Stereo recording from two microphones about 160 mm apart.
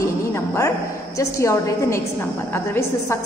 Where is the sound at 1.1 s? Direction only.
20° left (ahead or behind).